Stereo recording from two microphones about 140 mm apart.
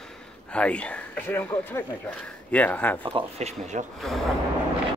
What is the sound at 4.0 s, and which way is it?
Speech, centre (ahead or behind).